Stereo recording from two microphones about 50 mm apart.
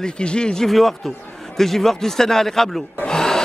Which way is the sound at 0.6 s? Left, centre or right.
Centre.